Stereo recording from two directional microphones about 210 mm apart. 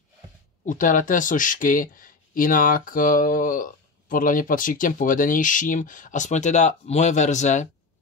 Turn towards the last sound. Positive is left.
turn(degrees=35)  # may be behind; listen again after turning